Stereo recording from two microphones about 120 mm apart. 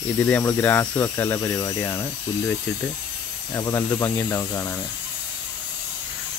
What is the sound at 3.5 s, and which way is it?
Speech, 20° left (ahead or behind).